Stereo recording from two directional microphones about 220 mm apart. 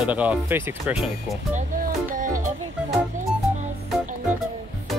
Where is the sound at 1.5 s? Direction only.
40° right (ahead or behind).